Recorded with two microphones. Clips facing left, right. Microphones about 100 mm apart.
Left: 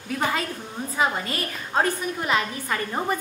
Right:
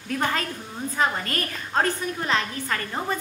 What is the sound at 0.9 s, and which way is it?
A woman's voice, 5° left (ahead or behind).